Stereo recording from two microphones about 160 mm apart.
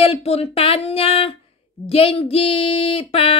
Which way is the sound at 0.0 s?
40° left (ahead or behind).